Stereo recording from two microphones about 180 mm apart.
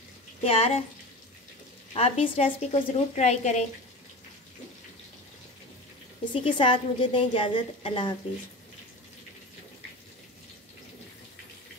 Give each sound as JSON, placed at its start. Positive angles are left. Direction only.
{"t": 0.4, "sound": "a woman's voice", "side_deg": 35}
{"t": 2.0, "sound": "a woman's voice", "side_deg": 30}
{"t": 6.3, "sound": "a woman's voice", "side_deg": 30}